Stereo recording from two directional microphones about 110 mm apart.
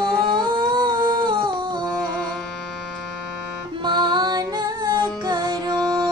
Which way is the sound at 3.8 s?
40° right (ahead or behind).